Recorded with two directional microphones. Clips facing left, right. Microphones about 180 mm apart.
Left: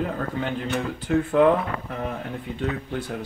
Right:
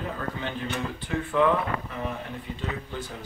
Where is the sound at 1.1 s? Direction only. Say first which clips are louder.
Left 9 dB; 50° left (ahead or behind).